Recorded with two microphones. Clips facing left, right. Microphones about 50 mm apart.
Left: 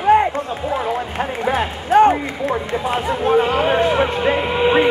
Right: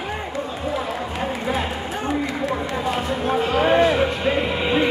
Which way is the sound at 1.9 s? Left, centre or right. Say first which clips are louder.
Left 17 dB; left.